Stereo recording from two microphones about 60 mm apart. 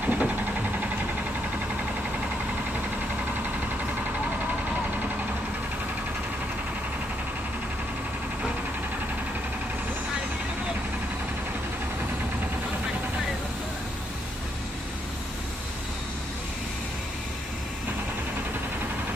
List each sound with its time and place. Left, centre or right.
0.0 s vehicle: right